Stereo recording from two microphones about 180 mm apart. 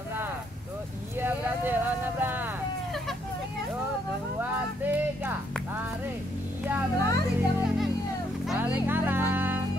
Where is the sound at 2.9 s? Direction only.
Centre (ahead or behind).